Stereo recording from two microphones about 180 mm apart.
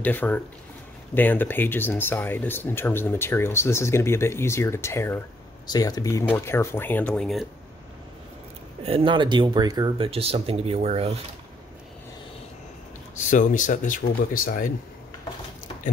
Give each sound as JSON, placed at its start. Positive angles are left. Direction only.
{"t": 0.0, "sound": "speech", "side_deg": 10}
{"t": 8.8, "sound": "speech", "side_deg": -30}
{"t": 13.1, "sound": "speech", "side_deg": 45}